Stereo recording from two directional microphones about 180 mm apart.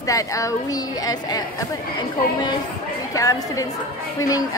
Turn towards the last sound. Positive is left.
turn(degrees=20)  # may be behind; listen again after turning